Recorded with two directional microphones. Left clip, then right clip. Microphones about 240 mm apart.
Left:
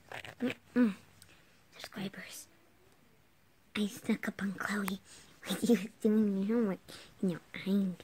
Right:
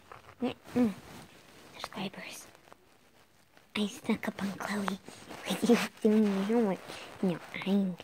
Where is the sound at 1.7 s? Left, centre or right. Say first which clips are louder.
Right 4 dB; centre.